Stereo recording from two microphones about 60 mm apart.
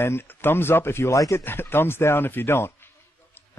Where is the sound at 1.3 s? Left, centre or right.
Left.